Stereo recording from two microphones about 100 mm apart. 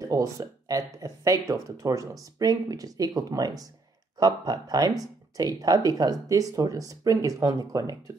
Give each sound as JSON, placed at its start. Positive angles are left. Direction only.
{"t": 0.1, "sound": "speech", "side_deg": -35}